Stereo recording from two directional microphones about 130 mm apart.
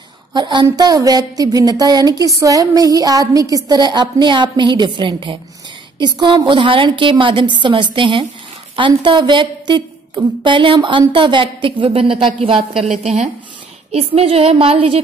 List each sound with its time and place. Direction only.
0.3 s a woman's voice: 35° right (ahead or behind)
13.0 s a woman's voice: 60° right (ahead or behind)